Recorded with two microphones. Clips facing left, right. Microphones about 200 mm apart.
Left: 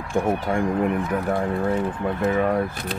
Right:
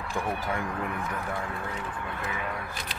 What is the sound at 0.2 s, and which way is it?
Speech, 45° left (ahead or behind).